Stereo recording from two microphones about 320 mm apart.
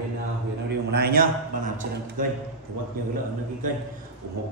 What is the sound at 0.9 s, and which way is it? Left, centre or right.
Speech, right.